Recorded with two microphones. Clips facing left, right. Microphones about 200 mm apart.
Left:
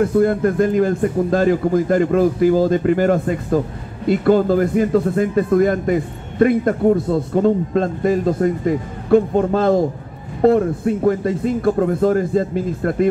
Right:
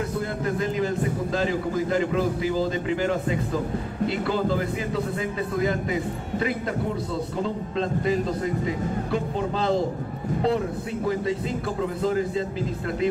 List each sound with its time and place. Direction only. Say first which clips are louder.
0.0 s a man's voice: left 12 dB; 55° left (ahead or behind)